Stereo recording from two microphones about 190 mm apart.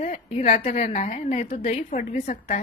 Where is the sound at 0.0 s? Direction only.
35° left (ahead or behind).